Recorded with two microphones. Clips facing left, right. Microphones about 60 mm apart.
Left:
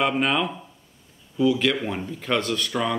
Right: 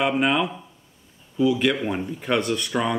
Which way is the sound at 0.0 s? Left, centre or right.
Centre.